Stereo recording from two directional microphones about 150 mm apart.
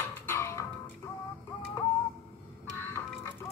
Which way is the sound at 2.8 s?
15° left (ahead or behind).